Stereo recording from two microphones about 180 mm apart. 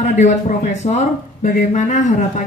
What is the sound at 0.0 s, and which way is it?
Speech, 45° left (ahead or behind).